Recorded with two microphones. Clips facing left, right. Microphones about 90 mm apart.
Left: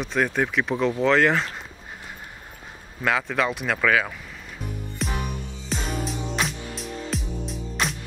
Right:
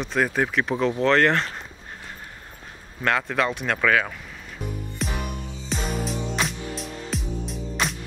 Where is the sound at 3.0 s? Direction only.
Centre (ahead or behind).